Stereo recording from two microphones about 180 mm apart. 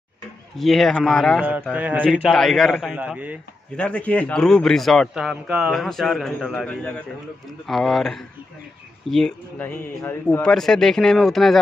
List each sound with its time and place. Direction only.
0.6 s a man's voice: centre (ahead or behind)
1.4 s a man's voice: 10° right (ahead or behind)
3.7 s a man's voice: 5° left (ahead or behind)